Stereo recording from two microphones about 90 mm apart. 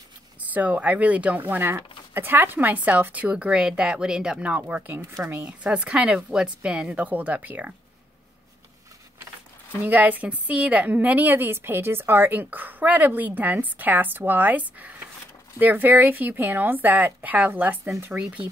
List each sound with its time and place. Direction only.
0.4 s speech: 15° right (ahead or behind)
9.8 s a woman's voice: 15° right (ahead or behind)
18.1 s speech: 5° right (ahead or behind)